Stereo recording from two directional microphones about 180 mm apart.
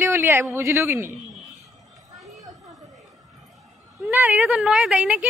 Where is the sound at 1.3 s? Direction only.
Centre (ahead or behind).